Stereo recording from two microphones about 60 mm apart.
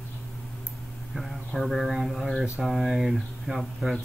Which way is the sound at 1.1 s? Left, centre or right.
Centre.